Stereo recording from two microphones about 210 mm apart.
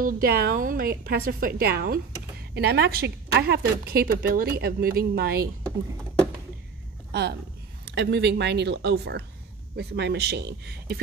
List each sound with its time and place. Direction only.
0.0 s a woman's voice: 45° right (ahead or behind)
7.1 s a woman's voice: 50° right (ahead or behind)